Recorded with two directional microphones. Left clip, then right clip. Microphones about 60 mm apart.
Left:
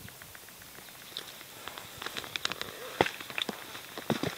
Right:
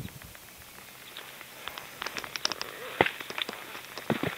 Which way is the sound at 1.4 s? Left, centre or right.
Centre.